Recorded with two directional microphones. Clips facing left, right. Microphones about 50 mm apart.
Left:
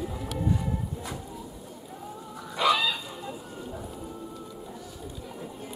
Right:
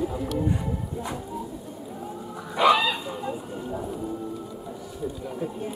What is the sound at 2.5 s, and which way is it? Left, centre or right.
Chicken, right.